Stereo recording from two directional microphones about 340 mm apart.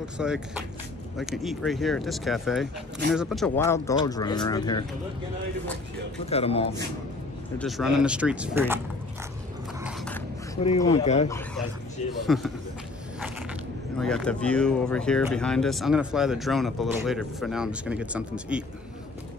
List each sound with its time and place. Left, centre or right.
0.2 s speech: centre
6.2 s speech: centre
7.5 s speech: centre
9.8 s a sound: centre
10.6 s speech: centre
11.2 s speech: centre
13.9 s speech: centre